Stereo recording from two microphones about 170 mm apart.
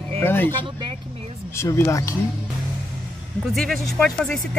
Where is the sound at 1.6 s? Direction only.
15° left (ahead or behind).